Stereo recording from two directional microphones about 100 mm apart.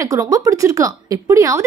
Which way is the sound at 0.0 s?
30° right (ahead or behind).